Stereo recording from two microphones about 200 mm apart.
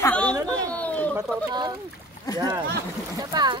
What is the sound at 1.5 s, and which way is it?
Speech, 20° right (ahead or behind).